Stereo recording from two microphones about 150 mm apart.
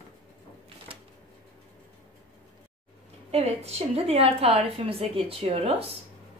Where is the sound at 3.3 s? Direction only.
40° right (ahead or behind).